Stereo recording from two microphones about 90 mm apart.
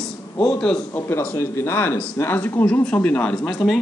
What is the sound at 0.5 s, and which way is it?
Speech, 15° left (ahead or behind).